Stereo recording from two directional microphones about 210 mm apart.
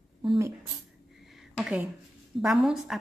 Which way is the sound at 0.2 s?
20° right (ahead or behind).